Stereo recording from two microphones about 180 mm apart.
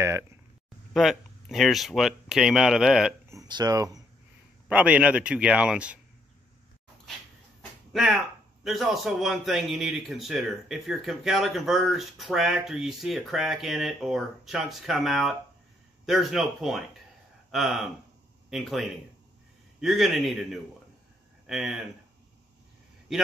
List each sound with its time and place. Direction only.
0.9 s a man's voice: centre (ahead or behind)
3.3 s a sound: 20° right (ahead or behind)
4.6 s a man's voice: 5° right (ahead or behind)
7.9 s a man's voice: centre (ahead or behind)